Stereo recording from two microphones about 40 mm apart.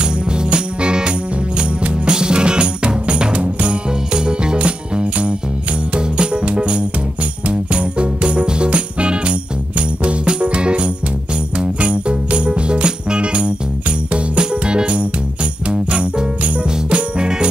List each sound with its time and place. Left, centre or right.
0.0 s music: right
15.7 s jingle bell: right